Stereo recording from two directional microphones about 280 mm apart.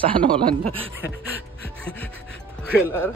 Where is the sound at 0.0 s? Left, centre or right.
Centre.